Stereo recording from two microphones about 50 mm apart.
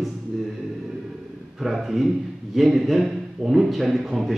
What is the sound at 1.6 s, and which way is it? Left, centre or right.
Speech, centre.